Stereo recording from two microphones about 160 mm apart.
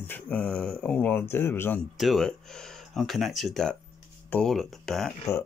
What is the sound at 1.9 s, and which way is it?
Speech, centre (ahead or behind).